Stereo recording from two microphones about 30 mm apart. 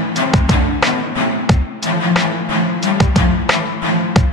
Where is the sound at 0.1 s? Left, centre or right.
Centre.